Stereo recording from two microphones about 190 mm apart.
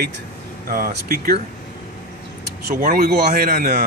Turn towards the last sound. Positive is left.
turn(degrees=-50)  # may be behind; listen again after turning